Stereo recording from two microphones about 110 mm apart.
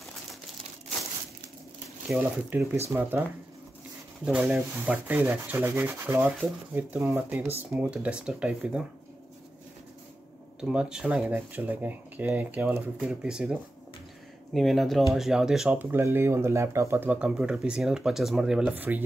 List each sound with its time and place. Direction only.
2.0 s speech: 15° right (ahead or behind)
2.9 s rub: 25° right (ahead or behind)
4.2 s speech: 10° right (ahead or behind)
4.9 s rub: 15° right (ahead or behind)
7.7 s speech: 10° right (ahead or behind)
10.6 s speech: 10° right (ahead or behind)
11.3 s speech: 15° right (ahead or behind)
15.8 s speech: 20° right (ahead or behind)